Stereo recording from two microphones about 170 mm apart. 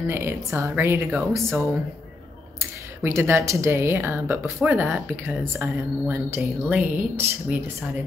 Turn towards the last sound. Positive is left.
turn(degrees=-10)  # may be behind; listen again after turning